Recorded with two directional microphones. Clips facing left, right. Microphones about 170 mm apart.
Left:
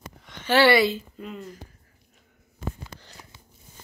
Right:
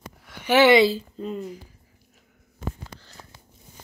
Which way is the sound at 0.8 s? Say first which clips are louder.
Right 3 dB; 35° right (ahead or behind).